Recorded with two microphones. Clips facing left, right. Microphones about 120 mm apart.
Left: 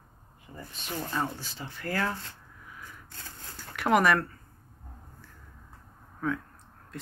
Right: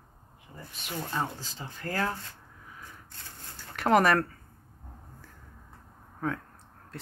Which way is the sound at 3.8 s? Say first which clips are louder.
Right 1 dB; 35° right (ahead or behind).